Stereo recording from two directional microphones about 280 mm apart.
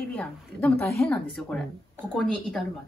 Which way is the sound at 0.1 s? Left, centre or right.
Centre.